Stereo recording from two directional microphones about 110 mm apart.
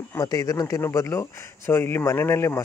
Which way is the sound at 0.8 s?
25° left (ahead or behind).